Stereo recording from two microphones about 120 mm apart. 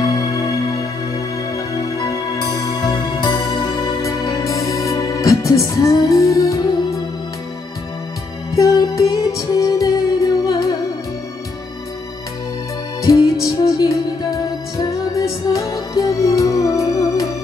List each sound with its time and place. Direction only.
0.0 s music: 30° left (ahead or behind)
8.5 s music: 25° left (ahead or behind)
13.0 s music: 30° left (ahead or behind)